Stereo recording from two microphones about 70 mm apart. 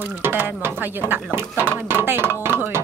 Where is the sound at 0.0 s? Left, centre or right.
Right.